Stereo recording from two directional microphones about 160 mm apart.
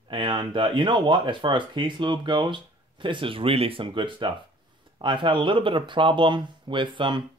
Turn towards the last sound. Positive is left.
turn(degrees=-30)  # may be behind; listen again after turning